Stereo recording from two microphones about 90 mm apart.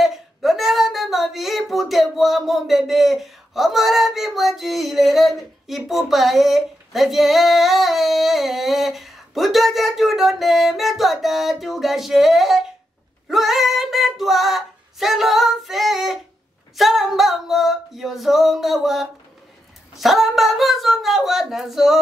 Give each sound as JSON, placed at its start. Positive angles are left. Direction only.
{"t": 0.0, "sound": "speech", "side_deg": 0}
{"t": 13.3, "sound": "female singing", "side_deg": 0}
{"t": 16.7, "sound": "singing", "side_deg": 0}
{"t": 20.0, "sound": "speech", "side_deg": 0}